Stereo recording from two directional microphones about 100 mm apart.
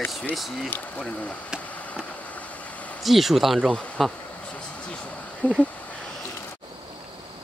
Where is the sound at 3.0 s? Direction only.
Centre (ahead or behind).